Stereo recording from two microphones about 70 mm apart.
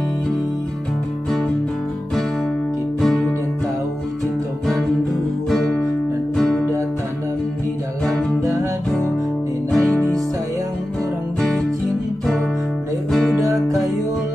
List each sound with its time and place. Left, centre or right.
3.0 s music: centre
5.5 s guitar: centre
6.3 s music: centre
8.4 s music: right
9.7 s music: centre
13.1 s music: centre